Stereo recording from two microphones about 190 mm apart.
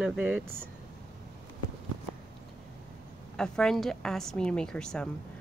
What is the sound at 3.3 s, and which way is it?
A woman's voice, 5° left (ahead or behind).